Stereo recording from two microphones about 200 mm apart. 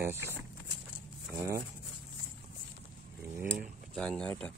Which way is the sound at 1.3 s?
15° right (ahead or behind).